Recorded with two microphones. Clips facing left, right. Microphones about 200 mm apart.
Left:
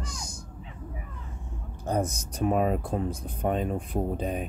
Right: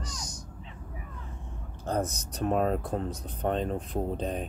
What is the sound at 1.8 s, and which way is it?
Speech, 10° left (ahead or behind).